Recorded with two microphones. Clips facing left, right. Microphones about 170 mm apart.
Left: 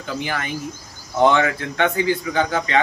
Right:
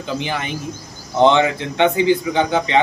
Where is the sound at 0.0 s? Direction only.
20° right (ahead or behind).